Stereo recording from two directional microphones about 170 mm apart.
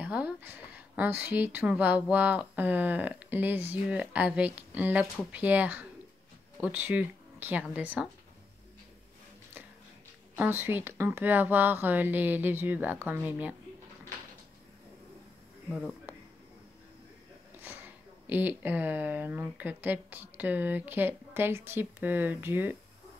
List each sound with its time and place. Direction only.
0.0 s speech: 10° right (ahead or behind)
10.3 s speech: 10° right (ahead or behind)
17.6 s speech: 10° right (ahead or behind)